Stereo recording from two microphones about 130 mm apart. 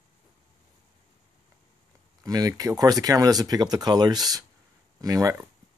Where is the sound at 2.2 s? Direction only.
30° right (ahead or behind).